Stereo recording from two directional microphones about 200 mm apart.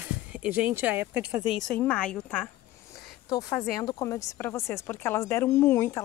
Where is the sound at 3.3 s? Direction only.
20° left (ahead or behind).